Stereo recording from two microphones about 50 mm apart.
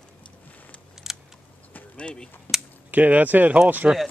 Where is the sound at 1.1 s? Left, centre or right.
Centre.